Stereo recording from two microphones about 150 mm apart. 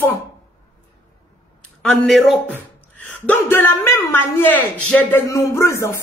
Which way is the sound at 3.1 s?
10° left (ahead or behind).